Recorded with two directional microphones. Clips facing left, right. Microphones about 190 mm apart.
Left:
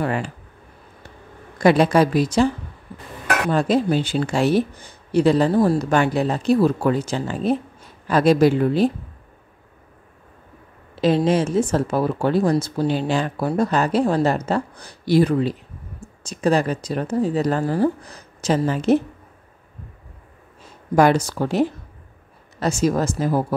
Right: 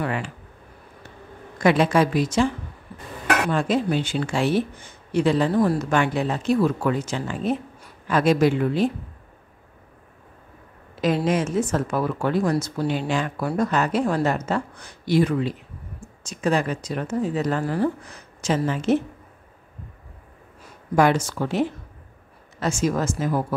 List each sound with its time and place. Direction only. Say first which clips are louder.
0.0 s a sound: left 3 dB; 40° left (ahead or behind)
1.6 s speech: left 3 dB; 40° left (ahead or behind)
3.5 s speech: left 3 dB; 35° left (ahead or behind)
11.0 s speech: left 4 dB; 30° left (ahead or behind)
20.9 s speech: left 3 dB; 40° left (ahead or behind)